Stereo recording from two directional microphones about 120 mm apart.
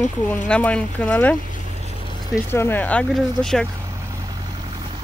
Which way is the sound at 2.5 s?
20° left (ahead or behind).